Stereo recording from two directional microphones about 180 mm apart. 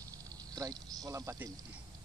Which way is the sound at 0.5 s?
20° right (ahead or behind).